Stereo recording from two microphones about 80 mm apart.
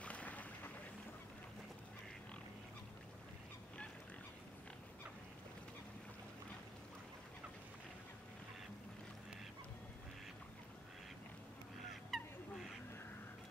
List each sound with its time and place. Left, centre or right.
0.0 s boat: centre
12.1 s fowl: centre